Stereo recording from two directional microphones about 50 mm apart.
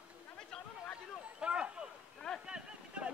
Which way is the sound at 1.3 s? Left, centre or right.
Right.